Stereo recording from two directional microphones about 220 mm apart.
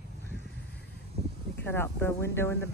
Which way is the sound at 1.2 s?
25° right (ahead or behind).